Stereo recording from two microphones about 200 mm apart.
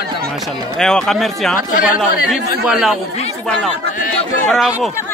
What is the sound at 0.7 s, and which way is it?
Speech, 5° left (ahead or behind).